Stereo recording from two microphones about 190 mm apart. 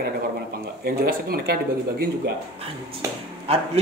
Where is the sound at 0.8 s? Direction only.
50° right (ahead or behind).